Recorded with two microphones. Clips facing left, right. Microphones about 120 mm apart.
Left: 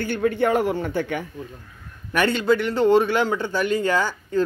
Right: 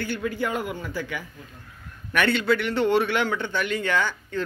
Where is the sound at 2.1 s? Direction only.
35° left (ahead or behind).